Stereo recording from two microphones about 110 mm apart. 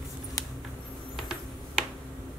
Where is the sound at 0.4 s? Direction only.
30° left (ahead or behind).